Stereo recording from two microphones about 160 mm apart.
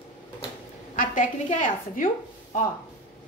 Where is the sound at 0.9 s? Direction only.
55° left (ahead or behind).